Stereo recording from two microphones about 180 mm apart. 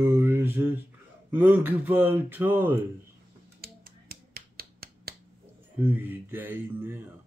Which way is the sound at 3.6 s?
55° right (ahead or behind).